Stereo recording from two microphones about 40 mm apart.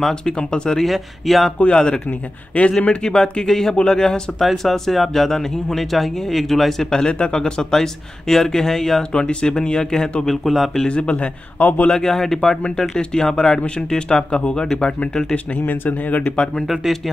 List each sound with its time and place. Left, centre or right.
0.1 s speech: left
0.7 s speech: centre
1.6 s speech: left
3.0 s speech: centre
4.4 s speech: centre
6.9 s speech: left
9.1 s speech: left
10.2 s speech: centre
10.9 s speech: left
11.5 s speech: left
11.9 s speech: centre
15.6 s speech: left
16.2 s speech: left
16.6 s speech: centre